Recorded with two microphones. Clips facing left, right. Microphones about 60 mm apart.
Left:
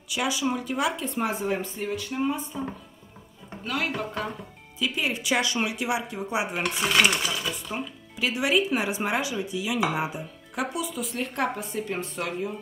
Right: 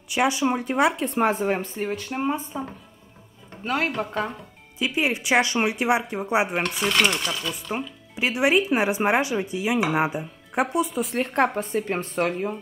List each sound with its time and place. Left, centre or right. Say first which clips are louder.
0.1 s speech: right 5 dB; right
0.7 s speech: right 6 dB; right
3.6 s speech: right 4 dB; right
4.7 s speech: right 4 dB; right
5.4 s speech: right 4 dB; right
6.5 s dishes: right 1 dB; centre
8.2 s speech: right 3 dB; right
9.2 s speech: right 4 dB; right